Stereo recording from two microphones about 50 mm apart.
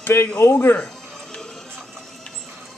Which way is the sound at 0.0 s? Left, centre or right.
Left.